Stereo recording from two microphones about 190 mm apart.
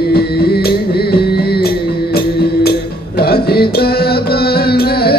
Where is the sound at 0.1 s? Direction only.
55° left (ahead or behind).